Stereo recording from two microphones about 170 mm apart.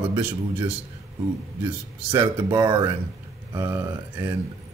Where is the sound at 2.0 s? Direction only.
30° right (ahead or behind).